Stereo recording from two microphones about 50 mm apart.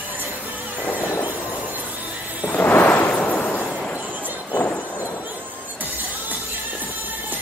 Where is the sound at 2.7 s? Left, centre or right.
Left.